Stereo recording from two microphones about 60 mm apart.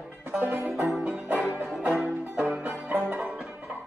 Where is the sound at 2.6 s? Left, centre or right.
Right.